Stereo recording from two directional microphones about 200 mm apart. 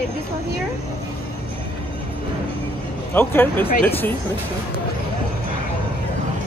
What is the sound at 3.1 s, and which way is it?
Speech, 10° left (ahead or behind).